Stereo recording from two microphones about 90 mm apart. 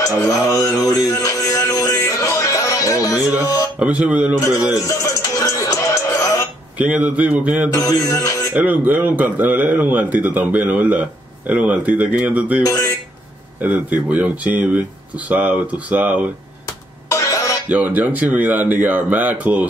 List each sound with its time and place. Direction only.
0.0 s music: 40° left (ahead or behind)
3.8 s a man's voice: 15° right (ahead or behind)
4.8 s music: 40° left (ahead or behind)
6.8 s a man's voice: 15° right (ahead or behind)
7.7 s music: 40° left (ahead or behind)
8.5 s a man's voice: 20° right (ahead or behind)
12.6 s speech: 35° left (ahead or behind)
13.6 s a man's voice: 20° right (ahead or behind)
17.1 s music: 40° left (ahead or behind)
17.6 s speech: 20° right (ahead or behind)